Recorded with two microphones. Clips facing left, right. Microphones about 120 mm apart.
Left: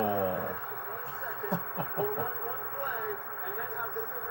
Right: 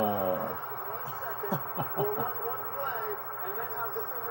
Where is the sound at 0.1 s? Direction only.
65° right (ahead or behind).